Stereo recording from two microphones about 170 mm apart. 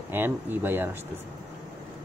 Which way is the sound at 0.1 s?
10° right (ahead or behind).